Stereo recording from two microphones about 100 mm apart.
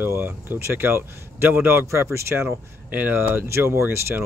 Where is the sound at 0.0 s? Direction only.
20° right (ahead or behind).